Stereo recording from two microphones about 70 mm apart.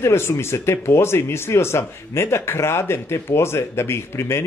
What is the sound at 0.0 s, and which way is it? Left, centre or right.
Speech, left.